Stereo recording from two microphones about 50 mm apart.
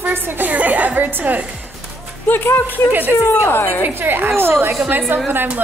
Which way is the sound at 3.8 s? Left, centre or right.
Right.